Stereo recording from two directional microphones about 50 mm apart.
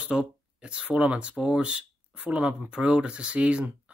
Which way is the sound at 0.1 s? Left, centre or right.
Right.